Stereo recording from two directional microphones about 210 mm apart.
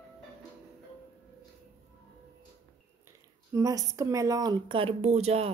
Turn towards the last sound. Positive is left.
turn(degrees=-30)  # may be behind; listen again after turning